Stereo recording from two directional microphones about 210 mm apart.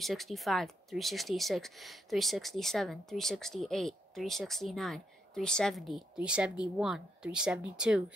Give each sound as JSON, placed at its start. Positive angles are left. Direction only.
{"t": 0.0, "sound": "speech", "side_deg": 0}